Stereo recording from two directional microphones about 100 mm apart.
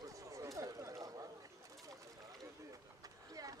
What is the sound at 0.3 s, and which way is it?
Chatter, 35° right (ahead or behind).